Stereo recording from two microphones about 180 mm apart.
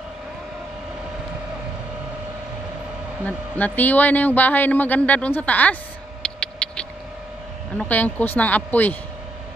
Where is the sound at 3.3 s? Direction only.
10° left (ahead or behind).